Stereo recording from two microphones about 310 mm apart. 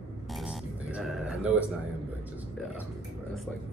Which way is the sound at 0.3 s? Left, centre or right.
Centre.